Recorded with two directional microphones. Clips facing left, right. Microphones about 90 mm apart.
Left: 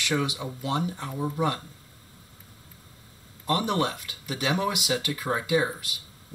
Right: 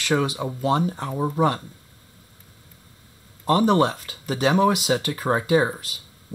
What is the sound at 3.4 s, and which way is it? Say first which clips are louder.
Speech: right 7 dB; 35° right (ahead or behind).